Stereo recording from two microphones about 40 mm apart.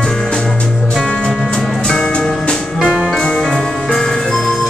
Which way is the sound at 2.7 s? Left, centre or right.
Centre.